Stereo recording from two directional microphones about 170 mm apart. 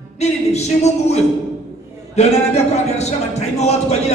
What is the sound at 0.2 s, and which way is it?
A man's voice, 40° left (ahead or behind).